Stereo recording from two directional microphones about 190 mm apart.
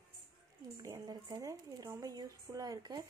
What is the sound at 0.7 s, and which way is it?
Speech, 20° right (ahead or behind).